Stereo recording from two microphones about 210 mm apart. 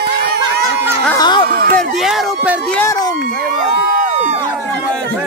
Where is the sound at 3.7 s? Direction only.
40° right (ahead or behind).